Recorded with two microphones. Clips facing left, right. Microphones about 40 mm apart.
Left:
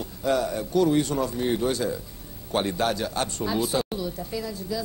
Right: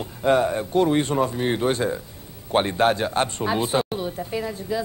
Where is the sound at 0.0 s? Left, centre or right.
Right.